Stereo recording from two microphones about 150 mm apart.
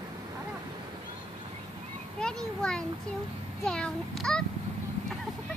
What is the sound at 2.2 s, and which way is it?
A child's voice, 5° left (ahead or behind).